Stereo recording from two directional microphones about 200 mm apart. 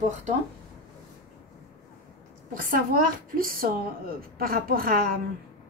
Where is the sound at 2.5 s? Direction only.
45° right (ahead or behind).